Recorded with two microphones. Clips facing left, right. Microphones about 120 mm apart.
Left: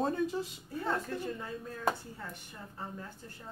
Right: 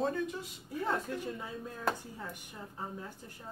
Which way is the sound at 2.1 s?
10° right (ahead or behind).